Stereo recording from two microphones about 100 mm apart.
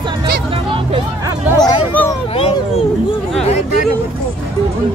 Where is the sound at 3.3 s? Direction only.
90° left.